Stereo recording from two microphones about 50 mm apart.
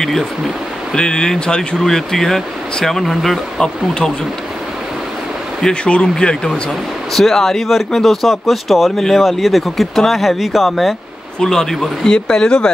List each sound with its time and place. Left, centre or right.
0.9 s speech: centre
5.9 s speech: centre
11.3 s a man's voice: centre
11.7 s speech: centre
12.1 s speech: centre